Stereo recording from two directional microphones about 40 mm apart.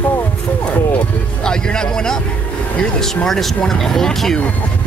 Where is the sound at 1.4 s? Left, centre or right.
Centre.